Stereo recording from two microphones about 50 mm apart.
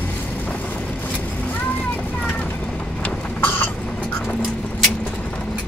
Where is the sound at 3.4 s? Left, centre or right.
Left.